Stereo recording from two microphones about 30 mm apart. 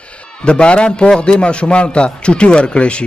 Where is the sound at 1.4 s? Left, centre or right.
Left.